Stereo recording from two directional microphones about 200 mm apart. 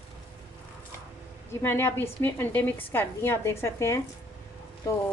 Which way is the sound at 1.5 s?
10° left (ahead or behind).